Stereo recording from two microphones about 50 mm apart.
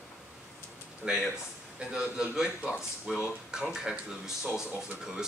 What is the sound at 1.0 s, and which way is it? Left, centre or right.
Speech, centre.